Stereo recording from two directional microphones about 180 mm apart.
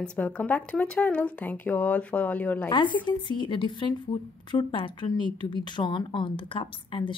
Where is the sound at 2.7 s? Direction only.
25° left (ahead or behind).